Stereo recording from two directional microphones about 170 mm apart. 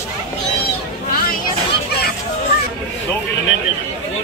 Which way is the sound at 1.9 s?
70° left (ahead or behind).